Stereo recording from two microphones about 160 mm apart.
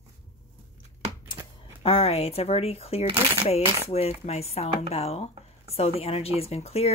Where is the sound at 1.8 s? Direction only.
35° left (ahead or behind).